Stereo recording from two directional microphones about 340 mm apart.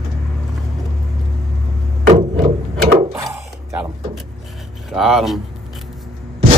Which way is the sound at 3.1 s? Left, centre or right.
Centre.